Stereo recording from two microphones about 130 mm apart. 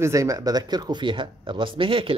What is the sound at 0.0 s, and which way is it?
Speech, 25° right (ahead or behind).